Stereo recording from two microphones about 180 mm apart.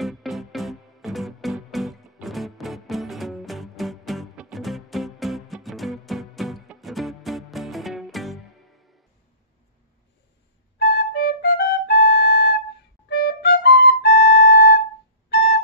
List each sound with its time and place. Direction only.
0.0 s music: centre (ahead or behind)
10.8 s flute: 65° left (ahead or behind)